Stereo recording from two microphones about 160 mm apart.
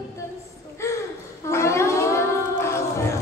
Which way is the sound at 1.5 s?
15° left (ahead or behind).